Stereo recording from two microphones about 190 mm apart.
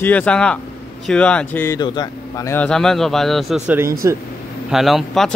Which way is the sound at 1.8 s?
20° left (ahead or behind).